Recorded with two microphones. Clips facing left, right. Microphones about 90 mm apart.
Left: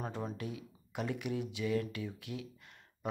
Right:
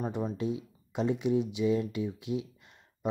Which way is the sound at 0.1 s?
20° right (ahead or behind).